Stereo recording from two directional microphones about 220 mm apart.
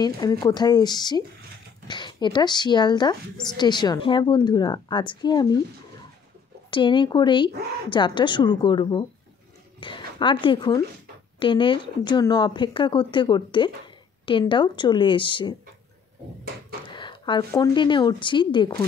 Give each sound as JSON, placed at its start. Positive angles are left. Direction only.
{"t": 0.0, "sound": "speech", "side_deg": 20}
{"t": 6.7, "sound": "speech", "side_deg": 20}
{"t": 16.9, "sound": "a woman's voice", "side_deg": 20}